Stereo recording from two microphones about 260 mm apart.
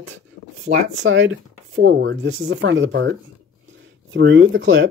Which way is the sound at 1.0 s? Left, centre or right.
Right.